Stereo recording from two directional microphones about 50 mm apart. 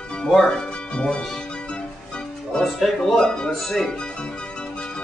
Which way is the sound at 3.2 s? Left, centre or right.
Centre.